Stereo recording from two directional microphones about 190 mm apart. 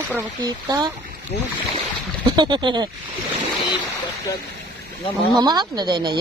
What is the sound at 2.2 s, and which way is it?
Speech, 25° right (ahead or behind).